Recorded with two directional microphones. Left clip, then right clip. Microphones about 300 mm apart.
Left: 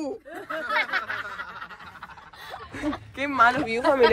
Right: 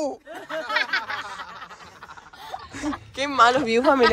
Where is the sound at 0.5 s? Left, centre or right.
Right.